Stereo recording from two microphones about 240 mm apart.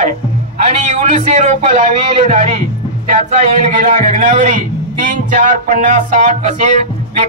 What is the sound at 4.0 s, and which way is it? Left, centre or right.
A man's voice, right.